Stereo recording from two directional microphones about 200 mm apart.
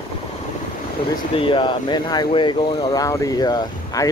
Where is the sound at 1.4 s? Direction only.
25° left (ahead or behind).